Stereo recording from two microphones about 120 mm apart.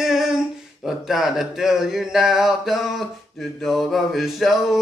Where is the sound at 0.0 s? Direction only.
5° right (ahead or behind).